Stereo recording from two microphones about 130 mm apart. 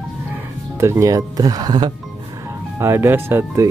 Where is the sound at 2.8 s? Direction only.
20° right (ahead or behind).